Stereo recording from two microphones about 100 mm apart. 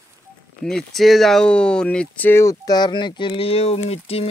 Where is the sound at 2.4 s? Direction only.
35° left (ahead or behind); by 4.3 s 85° left.